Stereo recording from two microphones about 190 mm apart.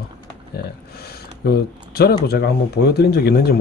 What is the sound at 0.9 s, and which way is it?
Speech, 55° left (ahead or behind).